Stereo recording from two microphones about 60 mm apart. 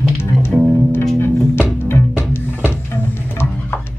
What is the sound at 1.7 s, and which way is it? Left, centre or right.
Music, left.